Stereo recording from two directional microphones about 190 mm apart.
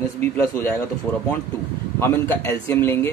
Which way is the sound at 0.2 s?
10° left (ahead or behind).